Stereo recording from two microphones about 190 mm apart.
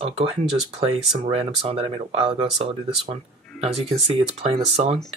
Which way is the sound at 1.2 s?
30° right (ahead or behind).